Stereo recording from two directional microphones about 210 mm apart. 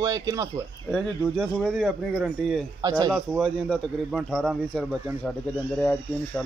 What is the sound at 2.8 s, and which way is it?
Speech, 15° right (ahead or behind).